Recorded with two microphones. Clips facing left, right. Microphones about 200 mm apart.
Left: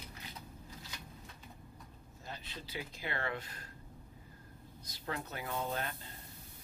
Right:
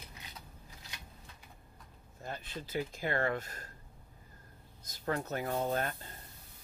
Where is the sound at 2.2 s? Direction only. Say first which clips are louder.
Right 5 dB; 50° right (ahead or behind).